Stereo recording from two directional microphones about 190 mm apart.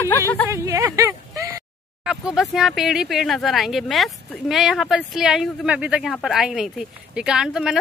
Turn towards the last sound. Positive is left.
turn(degrees=-5)  # may be behind; listen again after turning